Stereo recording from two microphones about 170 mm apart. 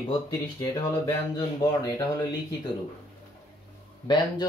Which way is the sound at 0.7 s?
20° left (ahead or behind).